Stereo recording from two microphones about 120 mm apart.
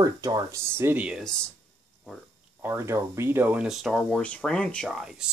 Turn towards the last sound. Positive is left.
turn(degrees=-5)  # may be behind; listen again after turning